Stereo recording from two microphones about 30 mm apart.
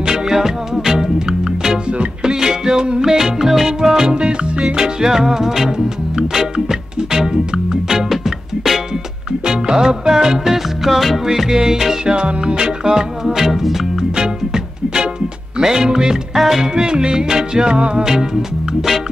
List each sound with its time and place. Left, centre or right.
0.0 s music: centre
4.1 s music: right
5.0 s music: centre
6.7 s music: centre
9.5 s music: right
12.2 s music: right
12.6 s music: centre
14.1 s music: right
16.3 s music: centre
16.7 s music: right